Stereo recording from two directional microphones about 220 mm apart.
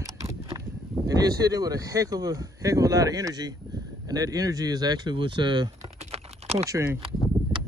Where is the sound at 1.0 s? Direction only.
15° right (ahead or behind).